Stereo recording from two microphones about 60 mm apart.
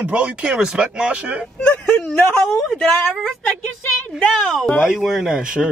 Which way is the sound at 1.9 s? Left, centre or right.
Centre.